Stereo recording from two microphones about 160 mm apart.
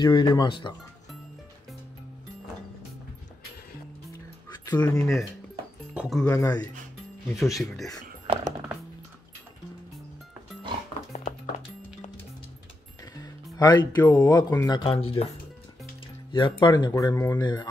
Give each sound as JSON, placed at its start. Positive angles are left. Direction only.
{"t": 0.0, "sound": "speech", "side_deg": 30}
{"t": 4.6, "sound": "speech", "side_deg": 20}
{"t": 5.9, "sound": "speech", "side_deg": 0}
{"t": 6.3, "sound": "speech", "side_deg": 20}
{"t": 7.3, "sound": "speech", "side_deg": 0}
{"t": 8.3, "sound": "music", "side_deg": -35}
{"t": 11.1, "sound": "music", "side_deg": 50}
{"t": 13.1, "sound": "speech", "side_deg": 25}
{"t": 14.8, "sound": "speech", "side_deg": 35}
{"t": 17.4, "sound": "speech", "side_deg": 25}